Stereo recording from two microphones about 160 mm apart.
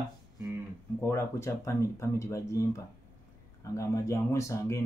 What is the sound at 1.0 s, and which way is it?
Speech, 15° left (ahead or behind).